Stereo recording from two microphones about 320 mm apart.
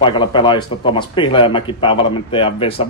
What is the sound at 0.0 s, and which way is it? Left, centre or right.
Speech, centre.